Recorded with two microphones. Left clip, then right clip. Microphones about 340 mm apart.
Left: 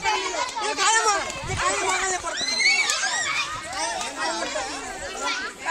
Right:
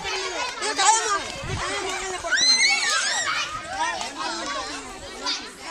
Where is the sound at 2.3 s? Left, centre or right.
Right.